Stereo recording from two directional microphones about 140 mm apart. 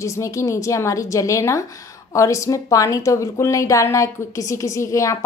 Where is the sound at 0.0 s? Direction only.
20° left (ahead or behind).